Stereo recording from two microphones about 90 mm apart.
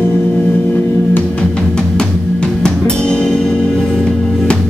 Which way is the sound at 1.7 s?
10° left (ahead or behind).